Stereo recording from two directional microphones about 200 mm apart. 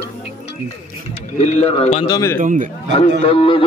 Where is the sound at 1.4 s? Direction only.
30° left (ahead or behind).